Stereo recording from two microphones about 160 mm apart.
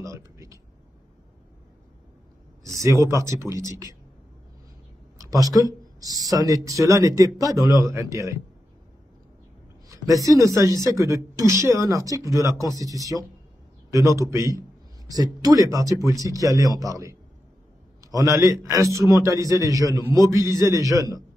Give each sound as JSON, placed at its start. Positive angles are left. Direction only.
{"t": 0.0, "sound": "a sound", "side_deg": -20}
{"t": 2.6, "sound": "speech", "side_deg": -20}
{"t": 5.2, "sound": "speech", "side_deg": -20}
{"t": 9.8, "sound": "speech", "side_deg": -20}